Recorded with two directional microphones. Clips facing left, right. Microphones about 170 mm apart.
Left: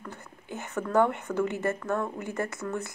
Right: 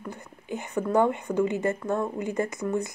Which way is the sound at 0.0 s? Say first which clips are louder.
Right 4 dB; 15° right (ahead or behind).